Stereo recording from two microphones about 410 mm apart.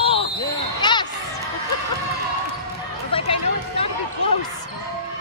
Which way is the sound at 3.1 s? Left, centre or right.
Centre.